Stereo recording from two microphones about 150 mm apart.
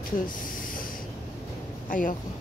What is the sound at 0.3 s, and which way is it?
Spray, 65° left (ahead or behind).